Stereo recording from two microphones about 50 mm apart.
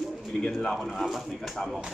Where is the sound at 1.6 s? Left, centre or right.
Centre.